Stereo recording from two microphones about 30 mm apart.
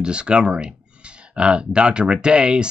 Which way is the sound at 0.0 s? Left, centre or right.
Right.